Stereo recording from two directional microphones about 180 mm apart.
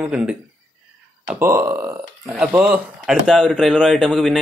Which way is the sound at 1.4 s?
15° right (ahead or behind).